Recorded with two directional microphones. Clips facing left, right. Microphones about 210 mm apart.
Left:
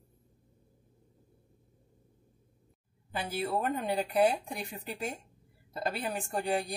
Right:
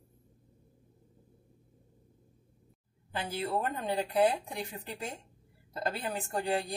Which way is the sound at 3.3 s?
10° left (ahead or behind).